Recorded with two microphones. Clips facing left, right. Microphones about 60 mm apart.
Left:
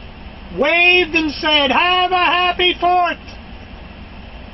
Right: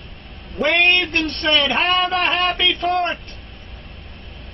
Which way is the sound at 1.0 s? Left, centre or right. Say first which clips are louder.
Left 4 dB; left.